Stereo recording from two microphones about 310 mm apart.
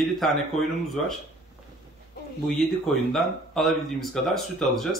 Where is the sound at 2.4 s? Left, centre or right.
Centre.